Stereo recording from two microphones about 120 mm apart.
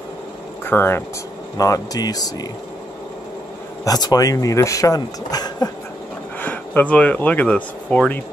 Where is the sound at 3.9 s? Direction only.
35° left (ahead or behind).